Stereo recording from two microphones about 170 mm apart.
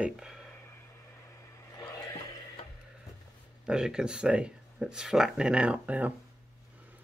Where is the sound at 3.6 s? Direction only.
5° right (ahead or behind).